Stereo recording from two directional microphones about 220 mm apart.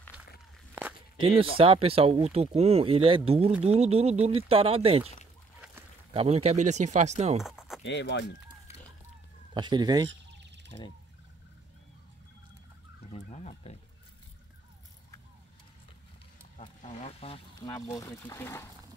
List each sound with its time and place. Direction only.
1.2 s speech: 25° right (ahead or behind)
6.1 s speech: 30° right (ahead or behind)
7.3 s a sound: centre (ahead or behind)
7.8 s speech: 50° left (ahead or behind)
9.5 s speech: 20° right (ahead or behind)
10.0 s fowl: 50° right (ahead or behind)
13.1 s a sound: 30° left (ahead or behind)
16.5 s speech: 30° left (ahead or behind); by 18.7 s 10° left (ahead or behind)